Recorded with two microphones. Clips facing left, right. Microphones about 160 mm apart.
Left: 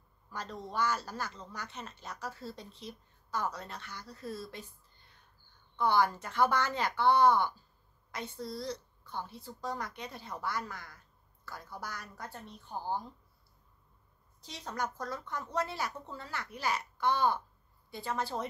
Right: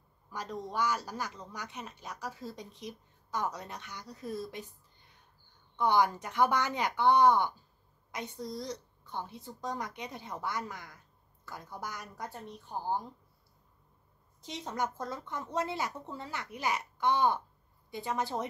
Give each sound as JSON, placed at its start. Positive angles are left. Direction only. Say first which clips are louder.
{"t": 0.3, "sound": "speech", "louder": "right 2 dB", "side_deg": -10}
{"t": 14.4, "sound": "speech", "louder": "right 3 dB", "side_deg": -20}